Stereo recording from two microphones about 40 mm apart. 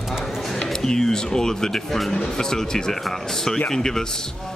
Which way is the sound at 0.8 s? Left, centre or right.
Centre.